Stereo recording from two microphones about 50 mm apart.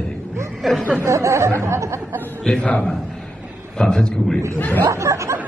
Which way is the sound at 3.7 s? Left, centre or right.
Centre.